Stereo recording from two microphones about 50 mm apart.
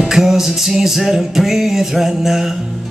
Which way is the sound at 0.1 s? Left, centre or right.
Centre.